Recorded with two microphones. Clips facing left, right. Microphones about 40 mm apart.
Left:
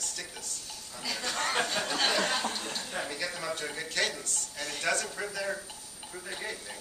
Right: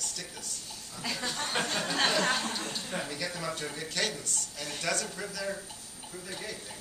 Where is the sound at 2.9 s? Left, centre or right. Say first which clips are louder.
Even; centre.